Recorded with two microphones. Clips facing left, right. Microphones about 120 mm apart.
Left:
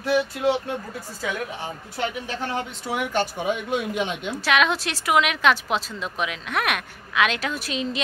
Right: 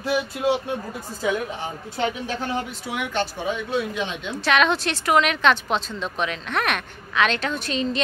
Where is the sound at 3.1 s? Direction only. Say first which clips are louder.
Even; 10° left (ahead or behind).